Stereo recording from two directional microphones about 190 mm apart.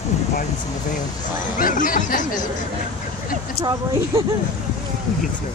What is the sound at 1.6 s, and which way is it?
Speech, 45° left (ahead or behind).